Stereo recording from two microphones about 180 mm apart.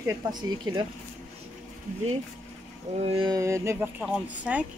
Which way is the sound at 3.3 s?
15° right (ahead or behind).